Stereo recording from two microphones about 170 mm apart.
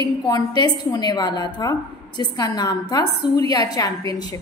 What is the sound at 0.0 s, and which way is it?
A woman's voice, 25° left (ahead or behind).